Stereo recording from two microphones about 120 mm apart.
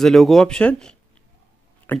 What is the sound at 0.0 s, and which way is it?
Speech, centre (ahead or behind).